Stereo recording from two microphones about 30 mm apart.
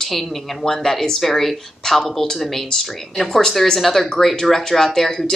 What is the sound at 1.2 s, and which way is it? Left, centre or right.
A woman's voice, centre.